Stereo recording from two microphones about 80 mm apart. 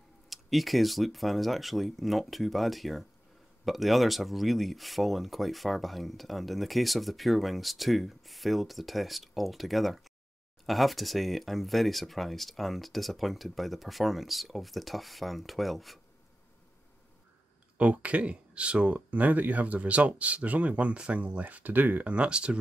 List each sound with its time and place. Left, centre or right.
0.3 s speech: centre
17.7 s speech: centre